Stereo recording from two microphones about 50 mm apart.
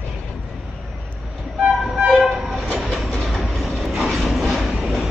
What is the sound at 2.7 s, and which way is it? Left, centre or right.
Train, centre.